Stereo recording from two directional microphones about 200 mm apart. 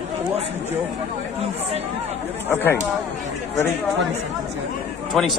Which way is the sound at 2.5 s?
10° left (ahead or behind).